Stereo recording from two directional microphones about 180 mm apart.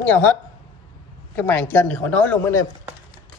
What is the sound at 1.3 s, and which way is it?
Speech, 10° left (ahead or behind).